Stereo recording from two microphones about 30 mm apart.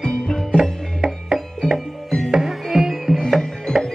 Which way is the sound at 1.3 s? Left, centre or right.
Centre.